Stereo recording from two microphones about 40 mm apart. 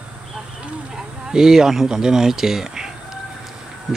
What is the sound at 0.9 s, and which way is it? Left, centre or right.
Speech, centre.